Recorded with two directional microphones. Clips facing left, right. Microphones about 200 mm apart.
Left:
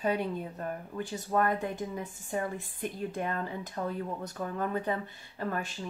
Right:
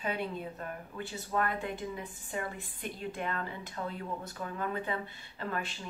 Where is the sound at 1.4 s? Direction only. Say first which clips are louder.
Left 4 dB; 45° left (ahead or behind).